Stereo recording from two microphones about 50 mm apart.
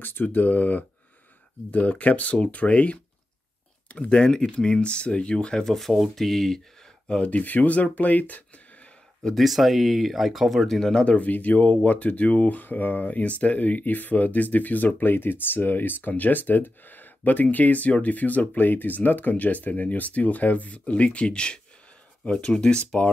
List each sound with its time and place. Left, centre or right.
0.0 s speech: left
4.1 s speech: centre
5.8 s speech: centre
7.2 s speech: left
9.3 s speech: centre
11.1 s speech: left; by 22.8 s centre